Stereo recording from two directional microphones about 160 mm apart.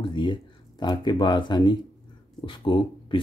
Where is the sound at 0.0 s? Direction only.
30° left (ahead or behind).